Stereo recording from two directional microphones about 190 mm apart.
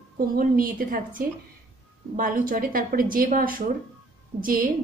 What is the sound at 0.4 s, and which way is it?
A woman's voice, 50° right (ahead or behind).